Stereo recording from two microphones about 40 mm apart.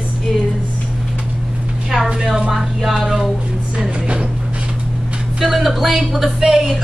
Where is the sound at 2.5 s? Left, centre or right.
Centre.